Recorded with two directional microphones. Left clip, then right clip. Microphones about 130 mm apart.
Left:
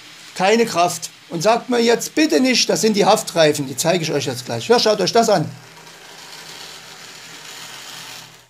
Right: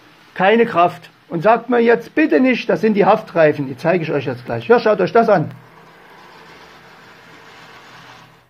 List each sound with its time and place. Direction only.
0.4 s speech: centre (ahead or behind)